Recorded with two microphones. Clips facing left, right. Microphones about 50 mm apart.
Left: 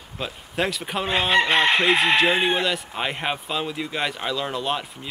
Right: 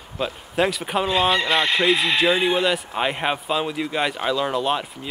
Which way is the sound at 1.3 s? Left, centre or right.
Left.